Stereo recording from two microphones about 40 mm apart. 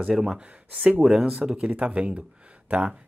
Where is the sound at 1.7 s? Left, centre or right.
Right.